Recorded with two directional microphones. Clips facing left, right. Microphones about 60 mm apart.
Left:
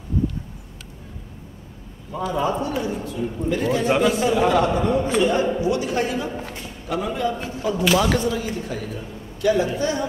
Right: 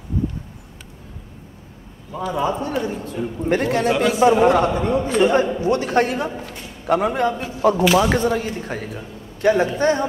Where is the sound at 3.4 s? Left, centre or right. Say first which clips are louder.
Right 3 dB; right.